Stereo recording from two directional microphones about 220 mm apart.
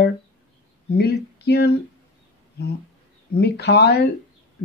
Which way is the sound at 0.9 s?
50° left (ahead or behind).